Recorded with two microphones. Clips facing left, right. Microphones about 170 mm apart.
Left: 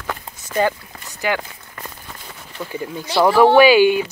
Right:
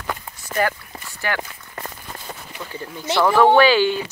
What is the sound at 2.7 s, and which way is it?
Speech, 15° left (ahead or behind).